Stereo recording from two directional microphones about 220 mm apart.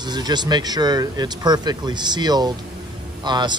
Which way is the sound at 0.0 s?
20° right (ahead or behind).